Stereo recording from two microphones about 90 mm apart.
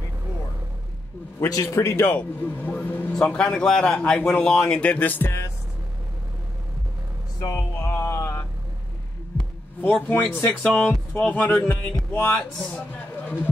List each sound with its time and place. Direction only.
1.5 s a man's voice: 40° left (ahead or behind)
1.8 s speech: 30° left (ahead or behind)
7.5 s mantra: 25° left (ahead or behind)
9.9 s speech: 15° left (ahead or behind)
11.3 s speech: 25° left (ahead or behind)
12.5 s speech: 10° left (ahead or behind)